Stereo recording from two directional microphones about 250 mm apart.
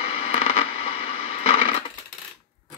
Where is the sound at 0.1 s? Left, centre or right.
Left.